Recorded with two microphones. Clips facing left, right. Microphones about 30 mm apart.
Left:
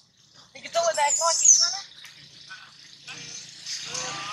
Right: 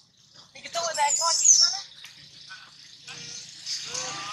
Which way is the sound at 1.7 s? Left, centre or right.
Centre.